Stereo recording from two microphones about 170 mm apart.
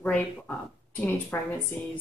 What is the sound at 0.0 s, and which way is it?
Speech, 10° left (ahead or behind).